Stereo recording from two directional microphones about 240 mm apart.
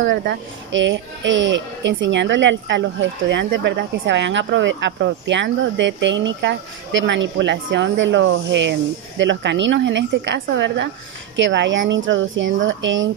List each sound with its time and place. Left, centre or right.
0.0 s speech: right